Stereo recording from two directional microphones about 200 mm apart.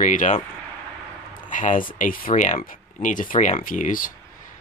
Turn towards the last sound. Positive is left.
turn(degrees=40)  # may be behind; listen again after turning